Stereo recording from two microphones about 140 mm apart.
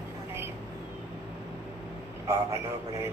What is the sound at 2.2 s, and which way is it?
Speech, 20° right (ahead or behind).